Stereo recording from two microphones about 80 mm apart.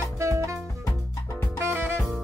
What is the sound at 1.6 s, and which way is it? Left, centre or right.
Music, right.